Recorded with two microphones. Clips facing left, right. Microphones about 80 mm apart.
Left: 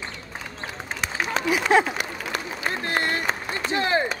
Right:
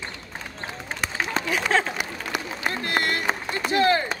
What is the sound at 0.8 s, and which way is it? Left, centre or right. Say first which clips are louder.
Run: even; centre.